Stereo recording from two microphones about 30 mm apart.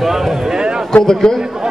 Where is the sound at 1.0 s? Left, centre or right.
Centre.